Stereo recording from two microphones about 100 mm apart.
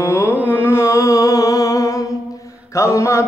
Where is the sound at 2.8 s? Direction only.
30° left (ahead or behind).